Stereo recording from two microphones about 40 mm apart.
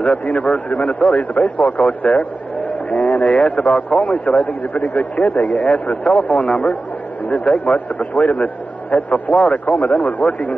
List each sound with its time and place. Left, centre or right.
0.0 s a man's voice: left